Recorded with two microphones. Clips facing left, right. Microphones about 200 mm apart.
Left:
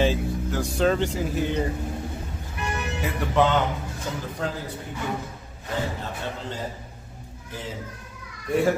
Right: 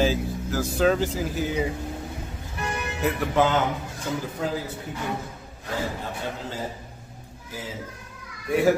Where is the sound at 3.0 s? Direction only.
Centre (ahead or behind).